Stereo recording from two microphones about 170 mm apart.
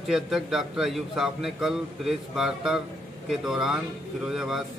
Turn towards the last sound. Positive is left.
turn(degrees=0)  # may be behind; listen again after turning